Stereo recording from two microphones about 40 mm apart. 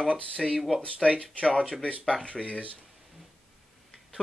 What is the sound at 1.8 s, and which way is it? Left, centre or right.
Speech, left.